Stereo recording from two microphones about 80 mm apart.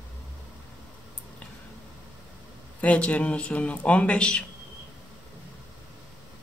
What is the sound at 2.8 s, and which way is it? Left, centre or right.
Speech, centre.